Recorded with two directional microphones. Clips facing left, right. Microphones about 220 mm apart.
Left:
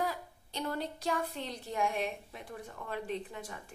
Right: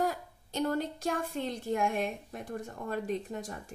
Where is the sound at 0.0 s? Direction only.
45° right (ahead or behind).